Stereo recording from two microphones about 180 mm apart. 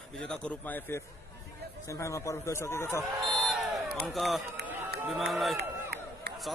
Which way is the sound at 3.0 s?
Centre (ahead or behind).